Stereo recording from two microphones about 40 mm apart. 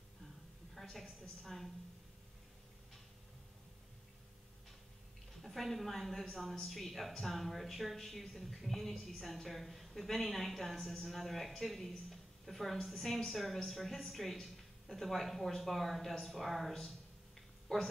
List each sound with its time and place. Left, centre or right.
0.7 s a woman's voice: centre
5.4 s speech: centre
17.7 s speech: centre